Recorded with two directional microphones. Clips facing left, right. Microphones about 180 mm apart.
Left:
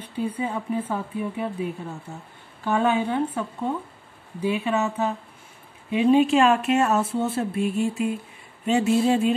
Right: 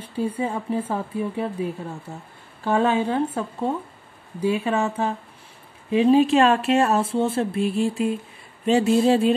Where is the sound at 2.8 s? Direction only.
30° right (ahead or behind).